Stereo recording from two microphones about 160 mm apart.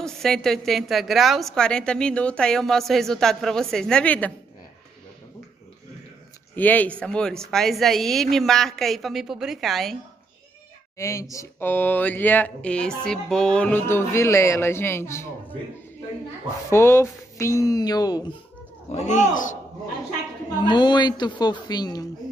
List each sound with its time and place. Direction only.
0.0 s a woman's voice: 5° left (ahead or behind)
6.5 s a woman's voice: 10° left (ahead or behind)
11.0 s speech: 20° left (ahead or behind)
16.7 s speech: 15° left (ahead or behind)
18.9 s speech: 45° left (ahead or behind)
20.6 s speech: 30° left (ahead or behind)